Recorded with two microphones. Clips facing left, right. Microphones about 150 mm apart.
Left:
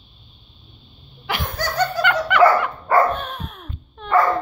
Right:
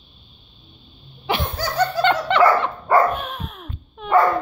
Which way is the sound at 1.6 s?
10° right (ahead or behind).